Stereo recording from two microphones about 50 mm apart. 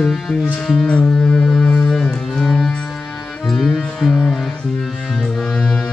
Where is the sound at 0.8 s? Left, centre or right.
Left.